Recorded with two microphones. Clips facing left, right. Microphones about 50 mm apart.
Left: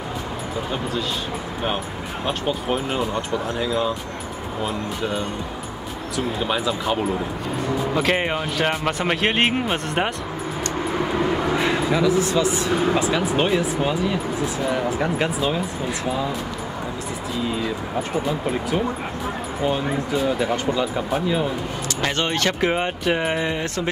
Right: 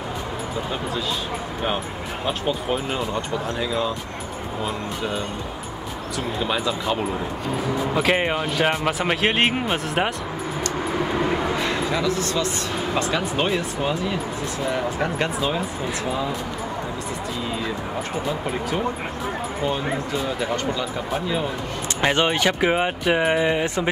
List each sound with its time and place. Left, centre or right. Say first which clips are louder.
2.2 s speech: left 1 dB; centre
4.6 s speech: left 2 dB; centre
6.4 s speech: even; centre
10.8 s vehicle: left 1 dB; centre
11.5 s speech: left 3 dB; centre
18.2 s speech: left 2 dB; centre
22.0 s speech: right 3 dB; centre